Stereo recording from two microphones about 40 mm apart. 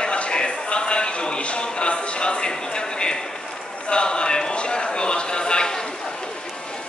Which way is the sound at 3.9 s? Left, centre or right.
Left.